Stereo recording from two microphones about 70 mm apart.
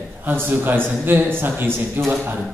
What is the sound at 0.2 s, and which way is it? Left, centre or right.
A man's voice, right.